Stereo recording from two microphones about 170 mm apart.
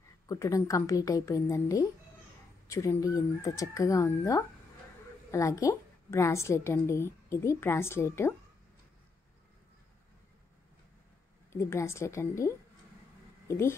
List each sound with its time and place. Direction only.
0.3 s a woman's voice: 20° left (ahead or behind)
11.5 s a woman's voice: 15° left (ahead or behind)